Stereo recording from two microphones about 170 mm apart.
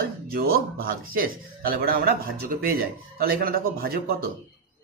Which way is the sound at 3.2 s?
60° right (ahead or behind).